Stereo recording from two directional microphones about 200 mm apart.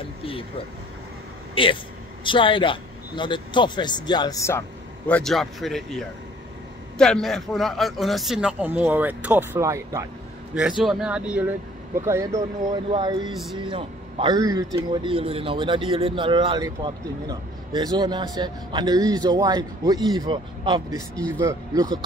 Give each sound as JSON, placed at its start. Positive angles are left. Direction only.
{"t": 0.2, "sound": "vehicle", "side_deg": 25}
{"t": 1.5, "sound": "a man's voice", "side_deg": 25}
{"t": 10.8, "sound": "a man's voice", "side_deg": 0}
{"t": 13.3, "sound": "a man's voice", "side_deg": 0}
{"t": 13.6, "sound": "speech", "side_deg": -25}